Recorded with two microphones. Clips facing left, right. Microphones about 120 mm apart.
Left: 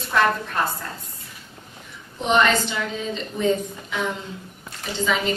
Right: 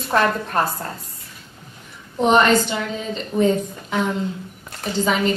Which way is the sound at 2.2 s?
40° right (ahead or behind).